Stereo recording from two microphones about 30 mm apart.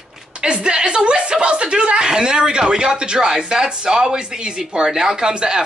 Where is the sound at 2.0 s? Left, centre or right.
Right.